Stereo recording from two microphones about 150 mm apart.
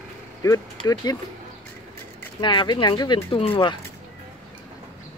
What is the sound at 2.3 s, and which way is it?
Speech, 30° left (ahead or behind).